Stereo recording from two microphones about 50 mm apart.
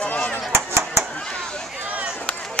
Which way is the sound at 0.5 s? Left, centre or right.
Right.